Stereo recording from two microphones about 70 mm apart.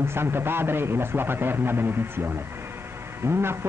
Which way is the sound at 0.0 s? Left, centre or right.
Right.